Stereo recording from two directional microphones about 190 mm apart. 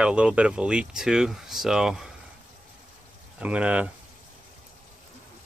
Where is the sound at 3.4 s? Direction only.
5° right (ahead or behind).